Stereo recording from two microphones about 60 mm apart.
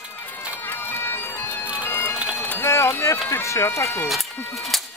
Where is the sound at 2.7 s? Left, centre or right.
Left.